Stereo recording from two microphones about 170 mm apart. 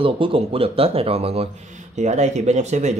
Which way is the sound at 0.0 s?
30° right (ahead or behind).